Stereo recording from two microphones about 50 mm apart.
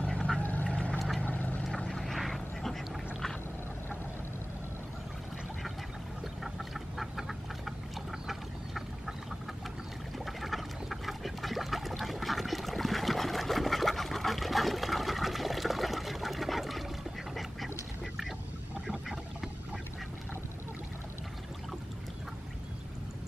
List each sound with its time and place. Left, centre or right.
0.0 s vehicle: centre
0.4 s vehicle: left
0.7 s vehicle: left
0.9 s vehicle: centre
1.2 s boat: left
1.7 s vehicle: centre
6.4 s duck: centre
10.1 s duck: centre
18.9 s boat: centre